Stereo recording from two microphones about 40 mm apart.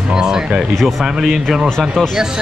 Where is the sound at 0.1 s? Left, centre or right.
Centre.